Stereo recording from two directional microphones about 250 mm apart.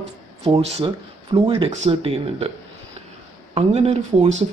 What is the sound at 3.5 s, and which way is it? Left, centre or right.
Speech, right.